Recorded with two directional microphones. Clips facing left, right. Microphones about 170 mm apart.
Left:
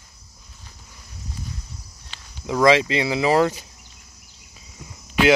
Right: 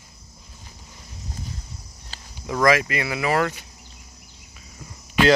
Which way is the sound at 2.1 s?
35° right (ahead or behind).